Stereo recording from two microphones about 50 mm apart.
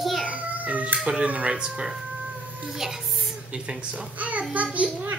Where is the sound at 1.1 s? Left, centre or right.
Right; by 3.3 s centre.